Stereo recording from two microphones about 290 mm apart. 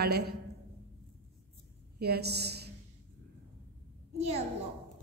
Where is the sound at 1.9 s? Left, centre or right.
Right.